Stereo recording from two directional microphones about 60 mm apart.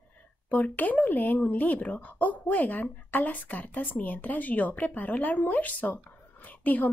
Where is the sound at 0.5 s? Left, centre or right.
Left.